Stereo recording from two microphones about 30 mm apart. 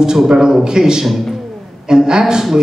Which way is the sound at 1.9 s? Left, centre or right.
Right.